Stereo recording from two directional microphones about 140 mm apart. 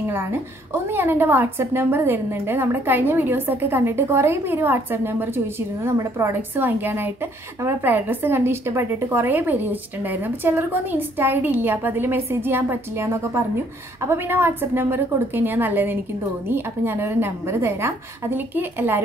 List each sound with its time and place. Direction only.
0.0 s a woman's voice: 15° right (ahead or behind)